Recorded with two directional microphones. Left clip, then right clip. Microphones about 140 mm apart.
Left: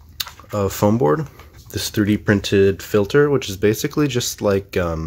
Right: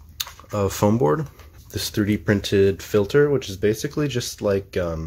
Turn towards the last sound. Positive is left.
turn(degrees=30)  # may be behind; listen again after turning